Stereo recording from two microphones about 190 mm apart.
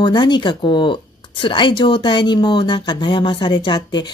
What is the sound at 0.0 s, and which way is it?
Speech, 25° left (ahead or behind).